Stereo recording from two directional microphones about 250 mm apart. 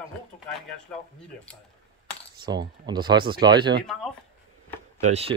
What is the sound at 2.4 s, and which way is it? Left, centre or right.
Speech, centre.